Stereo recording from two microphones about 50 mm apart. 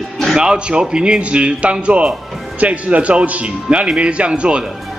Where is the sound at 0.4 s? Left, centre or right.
Centre.